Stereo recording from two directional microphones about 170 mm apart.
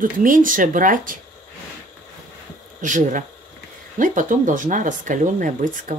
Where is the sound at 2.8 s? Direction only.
50° right (ahead or behind).